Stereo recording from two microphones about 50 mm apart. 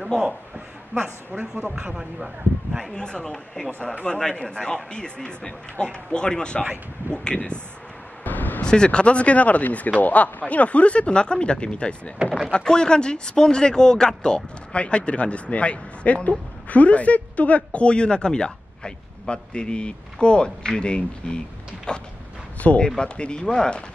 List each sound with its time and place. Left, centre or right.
0.0 s a man's voice: centre
2.0 s speech: centre
2.9 s speech: centre
3.3 s speech: centre
8.2 s vehicle: left
8.6 s speech: centre